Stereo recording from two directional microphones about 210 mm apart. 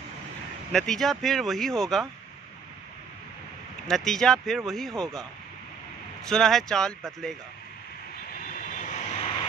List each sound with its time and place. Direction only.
0.7 s speech: centre (ahead or behind)
3.8 s speech: centre (ahead or behind)
6.2 s speech: centre (ahead or behind)
8.5 s vehicle: 35° left (ahead or behind)